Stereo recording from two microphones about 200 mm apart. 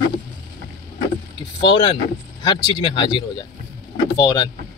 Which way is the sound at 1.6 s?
25° left (ahead or behind).